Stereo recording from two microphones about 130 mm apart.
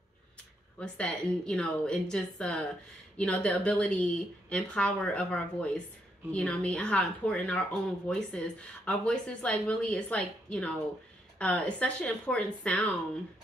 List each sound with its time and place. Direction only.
0.7 s a woman's voice: 10° left (ahead or behind)